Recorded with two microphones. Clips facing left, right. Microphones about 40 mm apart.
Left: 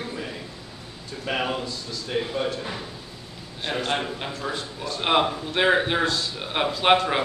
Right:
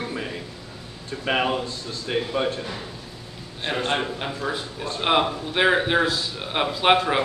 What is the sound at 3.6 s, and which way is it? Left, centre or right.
Speech, centre.